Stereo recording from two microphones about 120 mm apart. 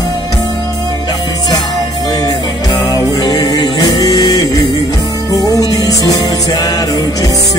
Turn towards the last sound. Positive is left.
turn(degrees=30)  # may be behind; listen again after turning